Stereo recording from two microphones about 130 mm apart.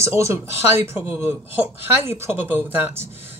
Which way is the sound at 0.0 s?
20° right (ahead or behind).